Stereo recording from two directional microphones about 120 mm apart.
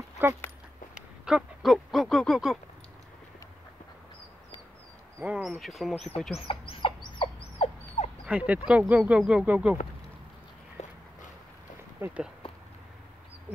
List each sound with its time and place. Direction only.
0.2 s speech: 15° right (ahead or behind)
0.9 s speech: 5° right (ahead or behind)
5.2 s speech: 10° right (ahead or behind)
6.4 s fowl: 50° left (ahead or behind)
8.0 s dog: 65° left (ahead or behind)
8.3 s speech: 10° right (ahead or behind)
10.8 s walk: 65° left (ahead or behind)
12.0 s speech: 10° right (ahead or behind)